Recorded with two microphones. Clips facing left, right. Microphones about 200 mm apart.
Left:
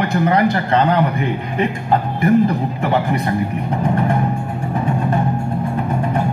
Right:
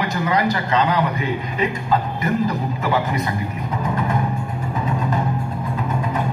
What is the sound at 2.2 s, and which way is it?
A man's voice, 55° left (ahead or behind).